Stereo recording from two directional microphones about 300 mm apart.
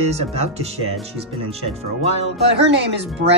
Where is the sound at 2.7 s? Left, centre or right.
Right.